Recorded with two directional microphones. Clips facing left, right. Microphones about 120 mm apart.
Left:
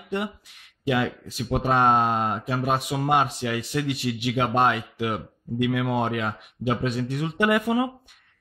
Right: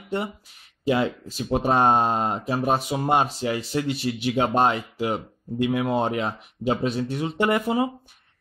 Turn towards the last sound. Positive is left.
turn(degrees=-25)  # may be behind; listen again after turning